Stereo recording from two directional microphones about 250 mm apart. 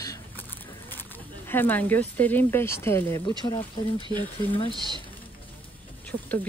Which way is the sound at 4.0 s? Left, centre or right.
Centre.